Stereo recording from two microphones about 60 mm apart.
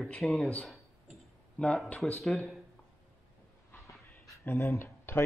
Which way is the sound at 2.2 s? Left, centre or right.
Centre.